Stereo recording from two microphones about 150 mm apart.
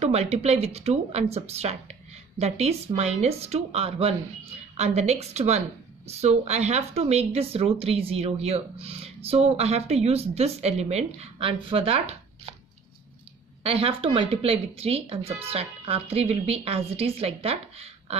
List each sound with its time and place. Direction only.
0.0 s speech: 45° right (ahead or behind)
13.6 s speech: 40° right (ahead or behind)